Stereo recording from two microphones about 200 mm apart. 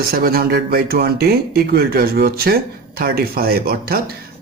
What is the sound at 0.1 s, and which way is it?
Speech, 50° right (ahead or behind).